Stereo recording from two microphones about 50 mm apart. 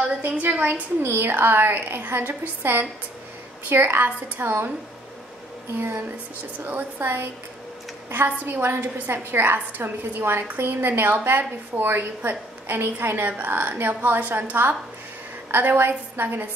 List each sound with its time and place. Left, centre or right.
0.2 s speech: right
1.0 s a woman's voice: right
5.8 s speech: right
6.6 s a woman's voice: right
8.5 s a woman's voice: right